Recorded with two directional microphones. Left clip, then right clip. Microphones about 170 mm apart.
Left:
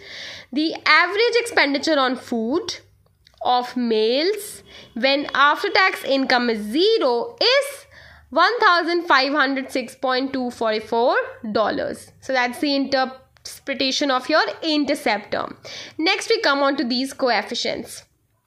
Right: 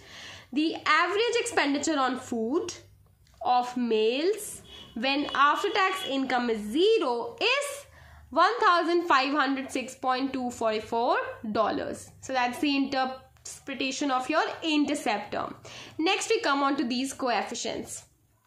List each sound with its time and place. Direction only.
0.7 s a woman's voice: 50° left (ahead or behind)
3.4 s a woman's voice: 45° left (ahead or behind)